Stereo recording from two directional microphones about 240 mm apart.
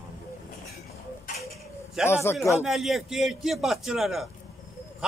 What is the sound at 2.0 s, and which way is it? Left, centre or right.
Speech, centre.